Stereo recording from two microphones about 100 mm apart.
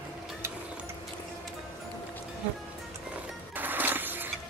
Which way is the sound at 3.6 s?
20° right (ahead or behind).